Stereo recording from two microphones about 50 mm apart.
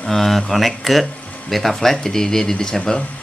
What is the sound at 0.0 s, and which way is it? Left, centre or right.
Speech, centre.